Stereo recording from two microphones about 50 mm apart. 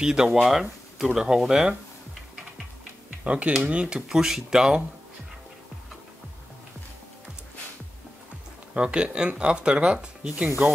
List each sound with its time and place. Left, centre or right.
0.0 s speech: centre
3.3 s speech: right
8.7 s speech: centre